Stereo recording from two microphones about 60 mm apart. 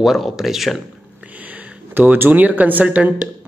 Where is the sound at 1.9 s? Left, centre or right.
Right.